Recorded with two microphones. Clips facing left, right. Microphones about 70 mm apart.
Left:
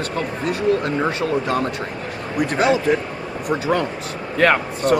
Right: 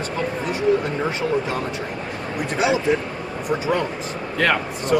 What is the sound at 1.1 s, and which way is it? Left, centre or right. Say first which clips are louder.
Speech: left 2 dB; left.